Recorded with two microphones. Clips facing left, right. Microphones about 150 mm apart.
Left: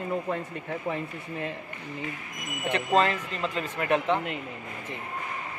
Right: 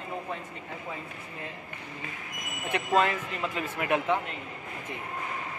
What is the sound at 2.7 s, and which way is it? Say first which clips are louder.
Speech: left 1 dB; 10° right (ahead or behind).